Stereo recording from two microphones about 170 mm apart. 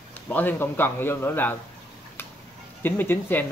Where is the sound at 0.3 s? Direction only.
10° left (ahead or behind).